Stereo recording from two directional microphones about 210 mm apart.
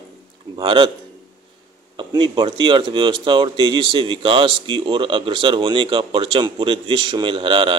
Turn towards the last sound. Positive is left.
turn(degrees=-25)  # may be behind; listen again after turning